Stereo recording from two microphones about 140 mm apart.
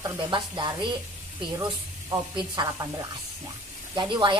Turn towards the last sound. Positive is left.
turn(degrees=-35)  # may be behind; listen again after turning